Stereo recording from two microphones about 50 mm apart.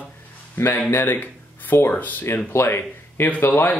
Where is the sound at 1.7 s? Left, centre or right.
Left.